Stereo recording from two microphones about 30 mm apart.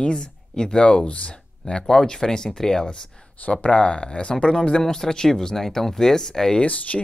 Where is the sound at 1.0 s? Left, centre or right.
Left.